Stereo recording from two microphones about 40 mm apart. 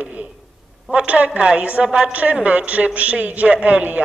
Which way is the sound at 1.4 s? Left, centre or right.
Right.